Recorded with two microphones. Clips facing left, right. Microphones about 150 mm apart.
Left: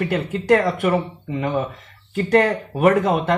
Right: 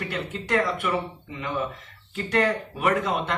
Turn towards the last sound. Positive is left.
turn(degrees=40)  # may be behind; listen again after turning